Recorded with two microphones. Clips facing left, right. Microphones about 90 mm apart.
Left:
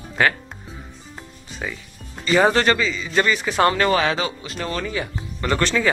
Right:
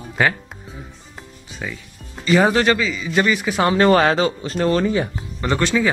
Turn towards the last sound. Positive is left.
turn(degrees=-10)  # may be behind; listen again after turning